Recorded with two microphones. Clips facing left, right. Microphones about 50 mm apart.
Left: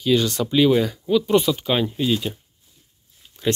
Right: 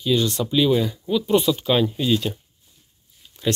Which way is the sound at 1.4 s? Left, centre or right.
Left.